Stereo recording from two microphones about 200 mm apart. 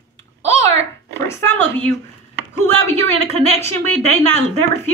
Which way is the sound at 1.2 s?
10° left (ahead or behind).